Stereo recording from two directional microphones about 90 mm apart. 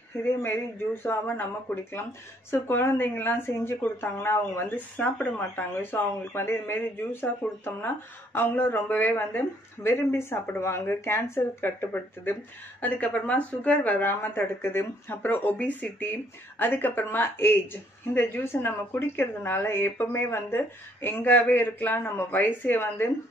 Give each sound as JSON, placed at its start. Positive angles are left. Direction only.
{"t": 0.2, "sound": "speech", "side_deg": 25}